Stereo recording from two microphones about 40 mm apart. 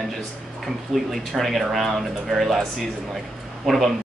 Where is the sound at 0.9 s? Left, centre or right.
Centre.